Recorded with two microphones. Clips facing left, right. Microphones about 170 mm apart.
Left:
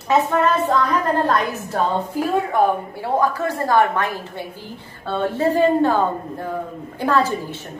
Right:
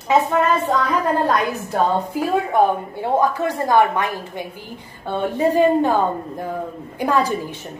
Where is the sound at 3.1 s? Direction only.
20° right (ahead or behind).